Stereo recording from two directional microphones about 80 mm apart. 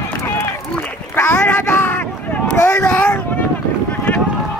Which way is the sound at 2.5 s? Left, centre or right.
Left.